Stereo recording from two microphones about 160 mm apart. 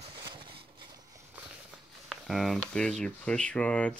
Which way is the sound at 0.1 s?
30° right (ahead or behind).